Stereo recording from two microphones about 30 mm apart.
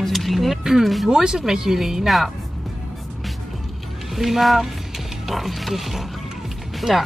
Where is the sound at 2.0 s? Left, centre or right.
Centre.